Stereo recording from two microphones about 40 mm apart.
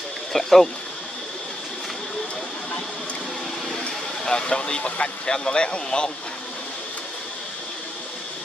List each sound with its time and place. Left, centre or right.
0.3 s speech: centre
4.2 s speech: centre